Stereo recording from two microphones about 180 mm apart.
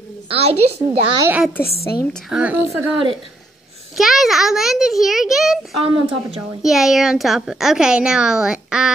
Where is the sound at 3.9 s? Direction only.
Centre (ahead or behind).